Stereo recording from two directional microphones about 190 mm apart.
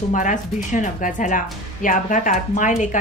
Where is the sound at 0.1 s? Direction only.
40° left (ahead or behind).